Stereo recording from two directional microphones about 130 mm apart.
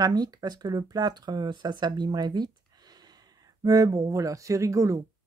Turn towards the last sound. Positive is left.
turn(degrees=-25)  # may be behind; listen again after turning